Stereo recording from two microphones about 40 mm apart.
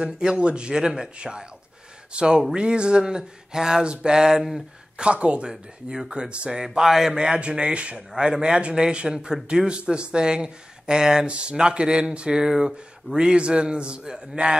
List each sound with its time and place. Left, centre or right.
0.0 s speech: right
5.1 s speech: right
5.5 s speech: centre
6.6 s speech: centre
11.2 s speech: right